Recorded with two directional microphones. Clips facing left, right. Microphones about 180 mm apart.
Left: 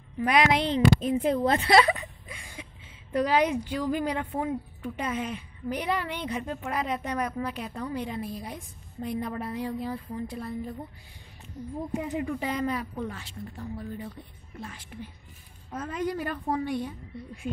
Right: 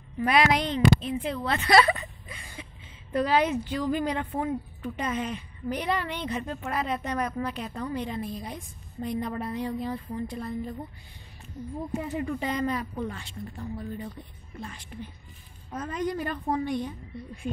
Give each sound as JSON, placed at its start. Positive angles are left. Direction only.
{"t": 0.2, "sound": "speech", "side_deg": 15}
{"t": 0.9, "sound": "a woman's voice", "side_deg": 45}
{"t": 1.7, "sound": "a sound", "side_deg": 15}
{"t": 3.1, "sound": "speech", "side_deg": 15}
{"t": 11.9, "sound": "speech", "side_deg": 15}